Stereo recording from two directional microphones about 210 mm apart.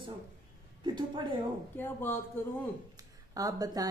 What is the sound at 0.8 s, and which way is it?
Speech, 20° right (ahead or behind).